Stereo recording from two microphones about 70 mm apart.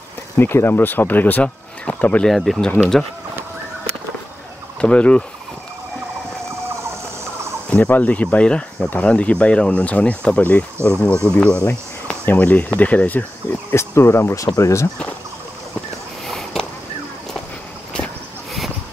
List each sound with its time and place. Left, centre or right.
0.4 s speech: left
2.2 s speech: centre
4.7 s fowl: centre
7.7 s speech: left
16.3 s a sound: centre